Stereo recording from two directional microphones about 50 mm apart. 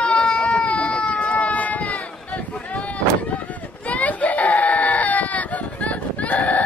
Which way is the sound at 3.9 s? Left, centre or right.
Left.